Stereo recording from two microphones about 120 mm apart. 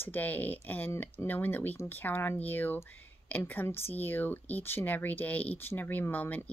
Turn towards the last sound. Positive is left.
turn(degrees=15)  # may be behind; listen again after turning